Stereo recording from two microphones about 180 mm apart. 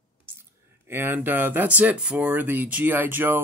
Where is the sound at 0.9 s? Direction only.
10° right (ahead or behind).